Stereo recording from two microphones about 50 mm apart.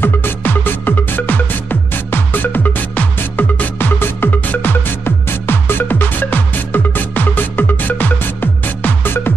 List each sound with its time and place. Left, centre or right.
0.0 s music: left